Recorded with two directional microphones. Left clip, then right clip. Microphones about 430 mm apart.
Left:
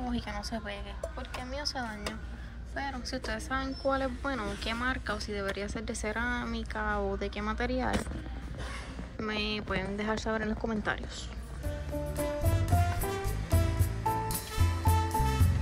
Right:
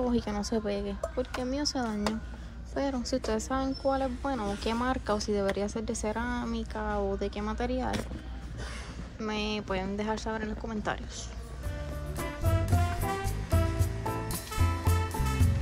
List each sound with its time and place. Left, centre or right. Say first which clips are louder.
0.1 s a woman's voice: right 6 dB; centre
9.2 s a woman's voice: even; centre
12.2 s music: right 1 dB; centre